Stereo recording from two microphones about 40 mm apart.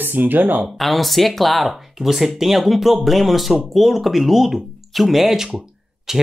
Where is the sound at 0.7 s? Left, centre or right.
Centre.